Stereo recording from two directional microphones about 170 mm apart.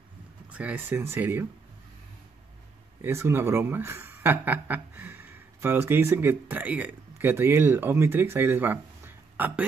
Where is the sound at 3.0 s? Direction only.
15° right (ahead or behind).